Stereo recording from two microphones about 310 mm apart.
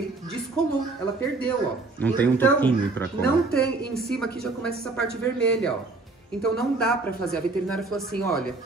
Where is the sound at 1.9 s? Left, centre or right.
Centre.